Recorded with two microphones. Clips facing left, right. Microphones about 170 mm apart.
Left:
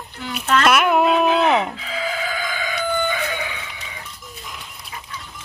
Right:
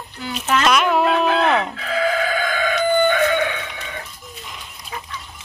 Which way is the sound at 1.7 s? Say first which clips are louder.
Right 6 dB; 60° right (ahead or behind).